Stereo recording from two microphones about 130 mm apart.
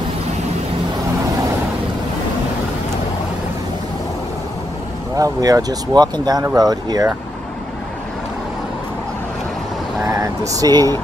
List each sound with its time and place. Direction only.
5.1 s speech: 30° right (ahead or behind)
10.0 s speech: 25° right (ahead or behind)